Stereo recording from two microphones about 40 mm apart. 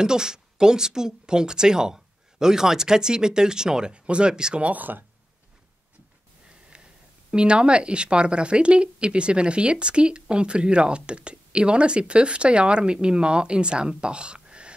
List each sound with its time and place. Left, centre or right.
0.0 s speech: centre
3.9 s speech: right
4.6 s speech: right
6.7 s speech: right